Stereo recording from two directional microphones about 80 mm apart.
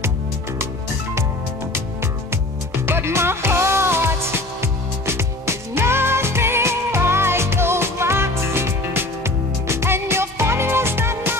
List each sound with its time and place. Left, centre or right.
2.9 s music: right